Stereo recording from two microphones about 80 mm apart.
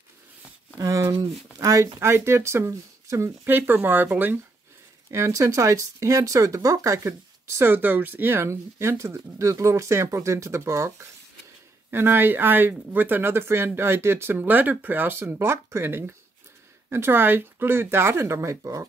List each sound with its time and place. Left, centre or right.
0.7 s speech: right
3.4 s speech: right
5.1 s speech: right